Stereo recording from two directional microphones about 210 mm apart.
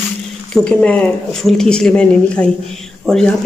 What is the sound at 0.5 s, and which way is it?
A woman's voice, 5° left (ahead or behind).